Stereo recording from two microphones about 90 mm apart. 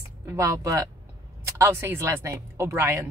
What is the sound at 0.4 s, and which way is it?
Speech, 35° right (ahead or behind).